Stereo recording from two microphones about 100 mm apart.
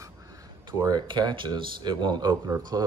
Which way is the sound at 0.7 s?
45° right (ahead or behind).